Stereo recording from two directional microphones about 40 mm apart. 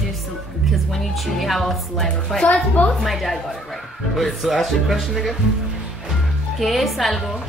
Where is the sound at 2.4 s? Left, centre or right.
Left.